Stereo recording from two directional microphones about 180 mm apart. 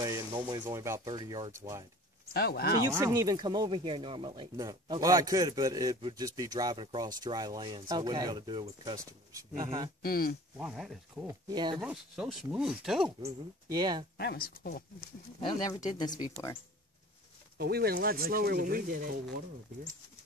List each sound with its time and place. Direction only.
0.0 s speech: 20° right (ahead or behind)
2.3 s speech: 60° left (ahead or behind)
2.9 s speech: 15° right (ahead or behind)
10.0 s speech: 55° left (ahead or behind)
10.6 s speech: 5° right (ahead or behind)
11.2 s speech: 20° right (ahead or behind)
11.8 s speech: 5° right (ahead or behind)
13.2 s speech: 25° right (ahead or behind)
14.1 s speech: 60° left (ahead or behind)
15.4 s speech: 20° left (ahead or behind)
17.6 s speech: 60° right (ahead or behind)